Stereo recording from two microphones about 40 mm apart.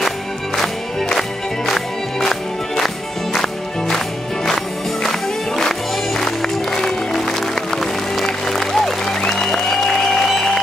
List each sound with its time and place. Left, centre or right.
1.7 s music: centre
5.6 s music: centre